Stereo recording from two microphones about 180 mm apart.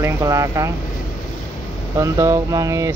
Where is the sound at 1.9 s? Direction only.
20° right (ahead or behind).